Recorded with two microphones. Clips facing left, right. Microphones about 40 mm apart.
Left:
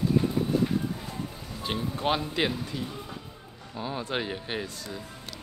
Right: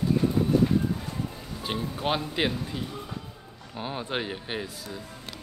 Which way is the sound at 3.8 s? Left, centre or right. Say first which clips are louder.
Even; right.